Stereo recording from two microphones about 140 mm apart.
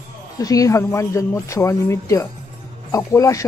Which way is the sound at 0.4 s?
25° left (ahead or behind).